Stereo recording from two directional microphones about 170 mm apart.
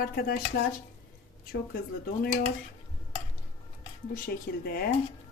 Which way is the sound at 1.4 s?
65° left (ahead or behind).